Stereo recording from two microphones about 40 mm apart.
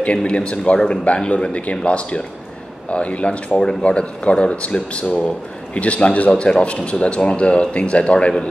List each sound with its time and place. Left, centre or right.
0.0 s a man's voice: left